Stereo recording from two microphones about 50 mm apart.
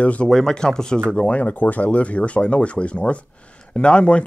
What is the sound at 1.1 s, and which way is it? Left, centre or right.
Speech, left.